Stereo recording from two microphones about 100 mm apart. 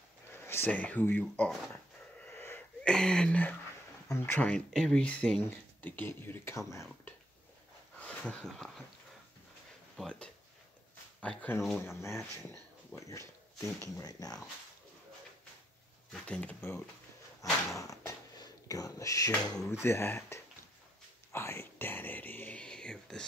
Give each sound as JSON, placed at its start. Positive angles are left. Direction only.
{"t": 0.3, "sound": "speech", "side_deg": 25}
{"t": 2.2, "sound": "wheeze", "side_deg": 20}
{"t": 2.8, "sound": "a sound", "side_deg": 5}
{"t": 4.5, "sound": "speech", "side_deg": 5}
{"t": 8.0, "sound": "speech", "side_deg": 10}
{"t": 9.9, "sound": "speech", "side_deg": 10}
{"t": 11.8, "sound": "speech", "side_deg": 25}
{"t": 16.3, "sound": "speech", "side_deg": 15}
{"t": 17.4, "sound": "speech", "side_deg": 35}
{"t": 19.8, "sound": "speech", "side_deg": 25}